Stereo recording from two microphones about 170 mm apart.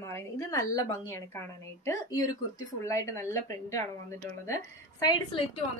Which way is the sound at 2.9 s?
15° left (ahead or behind).